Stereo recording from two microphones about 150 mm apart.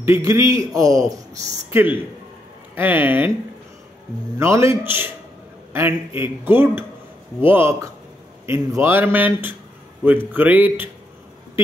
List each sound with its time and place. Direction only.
0.0 s speech: 20° right (ahead or behind)
4.4 s speech: 20° right (ahead or behind)